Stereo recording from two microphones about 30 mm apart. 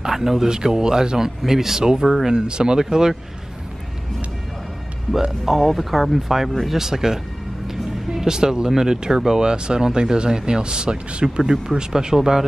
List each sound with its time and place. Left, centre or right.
0.0 s speech: centre; by 2.8 s right
2.8 s speech: centre
5.4 s speech: centre; by 11.0 s right
11.2 s speech: centre